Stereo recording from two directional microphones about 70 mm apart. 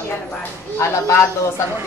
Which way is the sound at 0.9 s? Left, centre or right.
Left.